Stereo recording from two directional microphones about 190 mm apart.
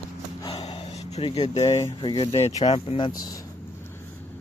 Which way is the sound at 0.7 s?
35° left (ahead or behind).